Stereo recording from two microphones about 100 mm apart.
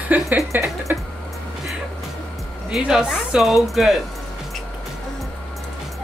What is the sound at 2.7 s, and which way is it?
Speech, 5° right (ahead or behind).